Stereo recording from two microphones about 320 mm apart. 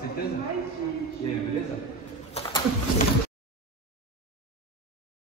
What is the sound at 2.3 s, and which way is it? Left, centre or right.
Pigeon, centre.